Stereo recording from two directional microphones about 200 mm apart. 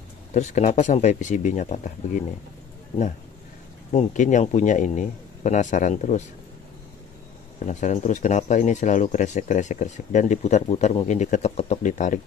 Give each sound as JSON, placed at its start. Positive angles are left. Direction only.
{"t": 0.3, "sound": "speech", "side_deg": 35}
{"t": 3.9, "sound": "speech", "side_deg": 35}
{"t": 7.5, "sound": "speech", "side_deg": 35}